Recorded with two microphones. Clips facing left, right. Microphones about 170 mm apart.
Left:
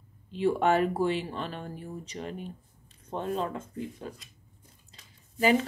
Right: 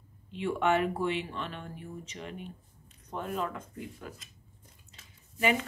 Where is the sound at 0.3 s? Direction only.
35° left (ahead or behind).